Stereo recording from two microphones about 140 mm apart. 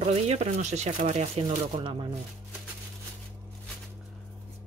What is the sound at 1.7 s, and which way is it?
Speech, 35° right (ahead or behind).